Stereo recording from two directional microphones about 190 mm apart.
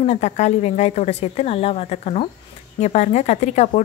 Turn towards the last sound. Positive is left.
turn(degrees=35)  # may be behind; listen again after turning